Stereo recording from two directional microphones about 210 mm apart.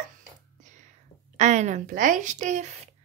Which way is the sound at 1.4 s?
35° right (ahead or behind).